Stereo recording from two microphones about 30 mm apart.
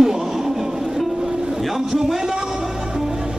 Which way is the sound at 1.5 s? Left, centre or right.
Centre.